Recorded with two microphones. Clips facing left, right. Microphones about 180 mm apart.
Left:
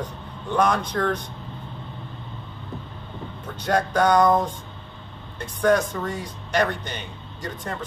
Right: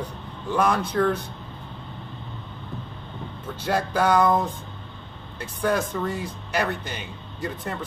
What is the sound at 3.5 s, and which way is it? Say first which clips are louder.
Speech: left 2 dB; 5° right (ahead or behind).